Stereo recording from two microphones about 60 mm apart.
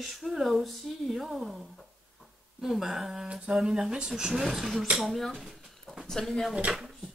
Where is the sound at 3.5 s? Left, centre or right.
Centre.